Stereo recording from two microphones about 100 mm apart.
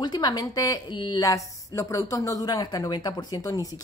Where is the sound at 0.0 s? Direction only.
45° left (ahead or behind).